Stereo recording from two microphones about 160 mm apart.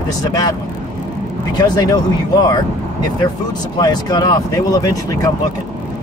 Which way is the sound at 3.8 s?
25° left (ahead or behind).